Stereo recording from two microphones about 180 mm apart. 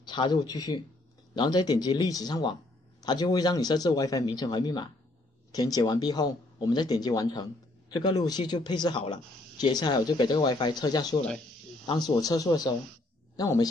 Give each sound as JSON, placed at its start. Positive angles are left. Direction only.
{"t": 0.0, "sound": "speech", "side_deg": 25}